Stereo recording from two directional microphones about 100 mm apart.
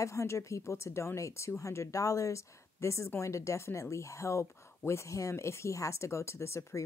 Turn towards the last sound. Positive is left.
turn(degrees=30)  # may be behind; listen again after turning